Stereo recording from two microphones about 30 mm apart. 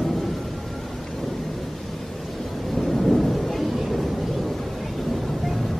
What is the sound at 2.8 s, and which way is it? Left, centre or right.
Thunder, centre.